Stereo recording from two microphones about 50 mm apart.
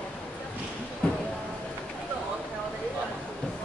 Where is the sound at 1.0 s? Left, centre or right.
Left.